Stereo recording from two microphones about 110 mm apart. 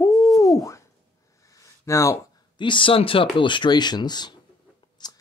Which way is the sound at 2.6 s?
50° left (ahead or behind).